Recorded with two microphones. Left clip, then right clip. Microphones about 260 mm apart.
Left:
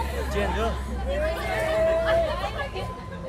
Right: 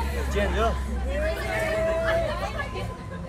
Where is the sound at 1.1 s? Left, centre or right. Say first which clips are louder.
Left 2 dB; left.